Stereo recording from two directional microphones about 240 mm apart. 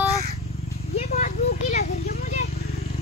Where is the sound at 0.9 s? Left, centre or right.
Left.